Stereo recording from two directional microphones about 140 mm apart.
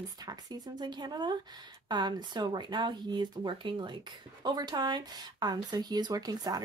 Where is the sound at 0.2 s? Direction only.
30° right (ahead or behind).